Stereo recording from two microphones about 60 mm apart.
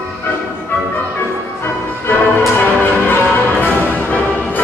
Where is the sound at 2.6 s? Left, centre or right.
Left.